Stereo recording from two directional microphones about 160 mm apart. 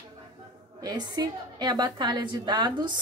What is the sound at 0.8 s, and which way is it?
A woman's voice, 25° right (ahead or behind).